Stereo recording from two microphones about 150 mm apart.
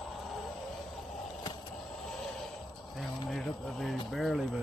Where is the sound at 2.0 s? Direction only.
Centre (ahead or behind).